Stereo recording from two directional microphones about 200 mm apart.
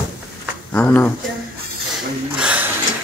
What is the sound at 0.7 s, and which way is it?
Speech, 10° left (ahead or behind).